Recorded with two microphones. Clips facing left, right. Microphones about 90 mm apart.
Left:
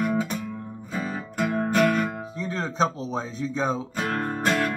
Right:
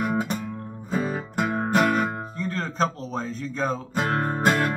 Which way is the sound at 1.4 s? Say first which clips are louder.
Even; 25° right (ahead or behind).